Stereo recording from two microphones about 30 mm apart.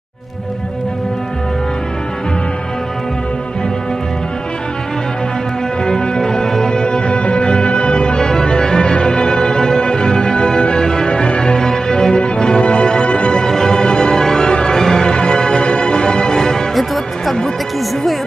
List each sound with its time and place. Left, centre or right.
5.9 s music: left
7.0 s music: left
11.1 s music: left
11.5 s music: left
13.0 s music: left
13.3 s music: left
14.5 s music: left
16.7 s music: centre